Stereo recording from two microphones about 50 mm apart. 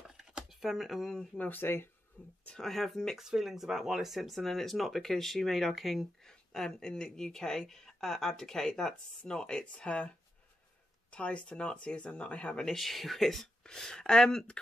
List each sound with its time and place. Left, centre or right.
0.5 s speech: centre
1.4 s speech: left
2.2 s speech: left
2.6 s speech: centre
3.2 s speech: centre; by 12.6 s left
12.6 s speech: centre
13.7 s speech: centre